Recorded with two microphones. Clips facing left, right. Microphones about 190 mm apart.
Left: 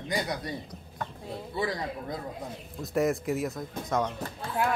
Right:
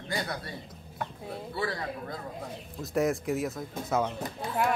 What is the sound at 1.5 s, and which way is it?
Speech, 20° left (ahead or behind).